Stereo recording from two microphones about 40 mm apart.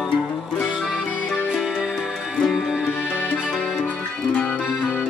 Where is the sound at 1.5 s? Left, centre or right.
Centre.